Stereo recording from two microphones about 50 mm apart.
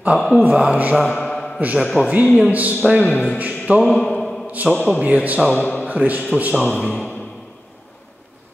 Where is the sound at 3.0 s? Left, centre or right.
Left.